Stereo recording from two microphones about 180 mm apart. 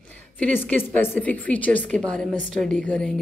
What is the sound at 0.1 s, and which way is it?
A woman's voice, 10° left (ahead or behind).